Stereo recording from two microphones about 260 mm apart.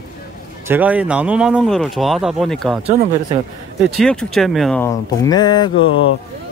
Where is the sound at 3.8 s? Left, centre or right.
Centre.